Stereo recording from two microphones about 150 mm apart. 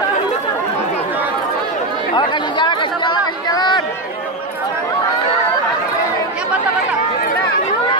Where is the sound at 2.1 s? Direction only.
30° left (ahead or behind).